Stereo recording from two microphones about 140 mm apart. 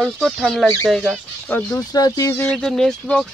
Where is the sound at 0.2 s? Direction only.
Centre (ahead or behind).